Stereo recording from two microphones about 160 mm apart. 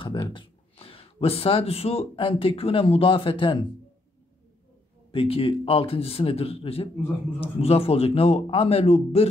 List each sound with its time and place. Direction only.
0.0 s speech: 30° left (ahead or behind)
5.1 s a man's voice: 35° left (ahead or behind)